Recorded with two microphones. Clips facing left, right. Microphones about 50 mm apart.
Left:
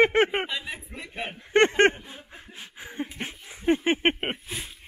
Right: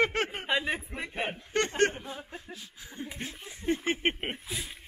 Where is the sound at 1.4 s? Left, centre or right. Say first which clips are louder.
Left 12 dB; left.